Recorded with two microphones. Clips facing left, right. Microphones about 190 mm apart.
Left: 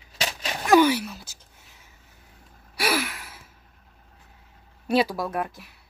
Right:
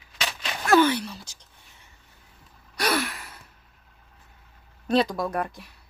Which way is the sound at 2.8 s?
5° left (ahead or behind).